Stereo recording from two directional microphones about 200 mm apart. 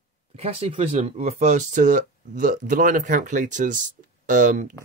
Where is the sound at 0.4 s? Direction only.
30° right (ahead or behind).